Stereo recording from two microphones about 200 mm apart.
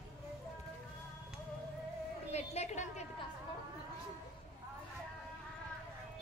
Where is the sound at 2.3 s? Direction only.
35° left (ahead or behind).